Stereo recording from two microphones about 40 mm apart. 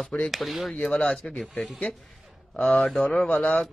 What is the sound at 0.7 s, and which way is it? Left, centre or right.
Speech, left.